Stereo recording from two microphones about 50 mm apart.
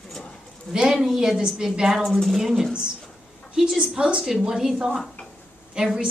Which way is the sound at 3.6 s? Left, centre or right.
Centre.